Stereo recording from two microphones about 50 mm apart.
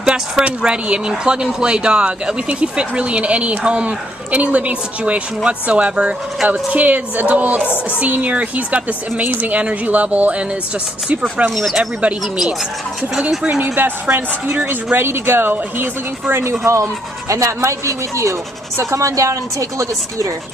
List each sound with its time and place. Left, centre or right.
0.0 s a woman's voice: right
11.5 s speech: centre
13.6 s a woman's voice: right
16.4 s speech: right